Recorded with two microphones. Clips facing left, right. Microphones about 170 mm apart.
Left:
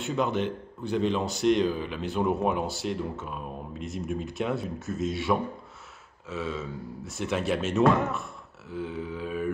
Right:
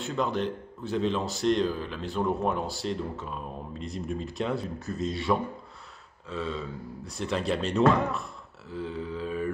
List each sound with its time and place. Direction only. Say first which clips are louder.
0.0 s speech: left 1 dB; centre (ahead or behind)